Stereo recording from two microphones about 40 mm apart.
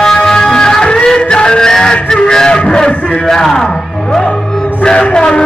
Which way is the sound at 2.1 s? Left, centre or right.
Centre.